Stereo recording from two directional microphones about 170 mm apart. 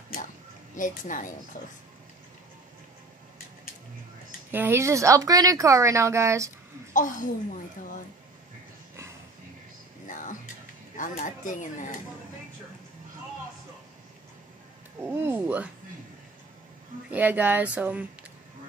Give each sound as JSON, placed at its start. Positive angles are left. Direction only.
{"t": 0.7, "sound": "speech", "side_deg": 50}
{"t": 4.5, "sound": "speech", "side_deg": -10}
{"t": 6.9, "sound": "speech", "side_deg": 50}
{"t": 10.0, "sound": "music", "side_deg": 50}
{"t": 11.0, "sound": "speech", "side_deg": 50}
{"t": 15.0, "sound": "speech", "side_deg": -15}
{"t": 17.1, "sound": "speech", "side_deg": -10}